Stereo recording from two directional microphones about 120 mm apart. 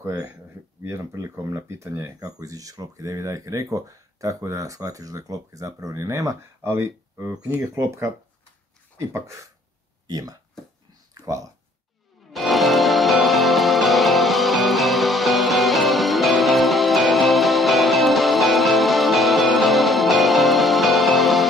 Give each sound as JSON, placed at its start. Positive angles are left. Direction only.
{"t": 0.0, "sound": "speech", "side_deg": -25}
{"t": 9.1, "sound": "speech", "side_deg": -25}
{"t": 11.1, "sound": "a sound", "side_deg": -25}
{"t": 12.3, "sound": "music", "side_deg": 0}